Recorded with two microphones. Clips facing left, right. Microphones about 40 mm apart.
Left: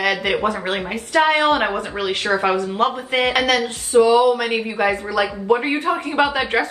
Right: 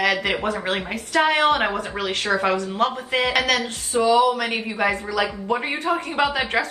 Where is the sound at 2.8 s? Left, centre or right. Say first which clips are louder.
Left 3 dB; left.